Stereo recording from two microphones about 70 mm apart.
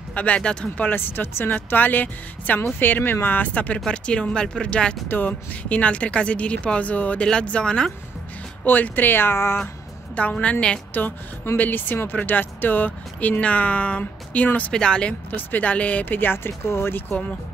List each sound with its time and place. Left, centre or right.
0.1 s speech: centre
0.8 s speech: left; by 4.9 s centre
5.0 s speech: left
8.6 s speech: left
10.1 s speech: centre
10.9 s speech: left